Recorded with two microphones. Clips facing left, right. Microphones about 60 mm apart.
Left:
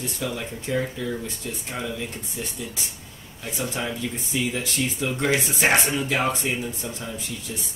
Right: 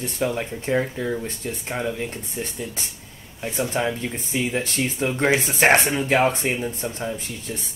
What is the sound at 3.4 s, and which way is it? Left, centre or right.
Speech, right.